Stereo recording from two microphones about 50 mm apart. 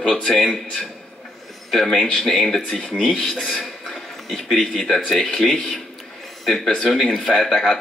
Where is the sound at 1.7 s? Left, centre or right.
Centre.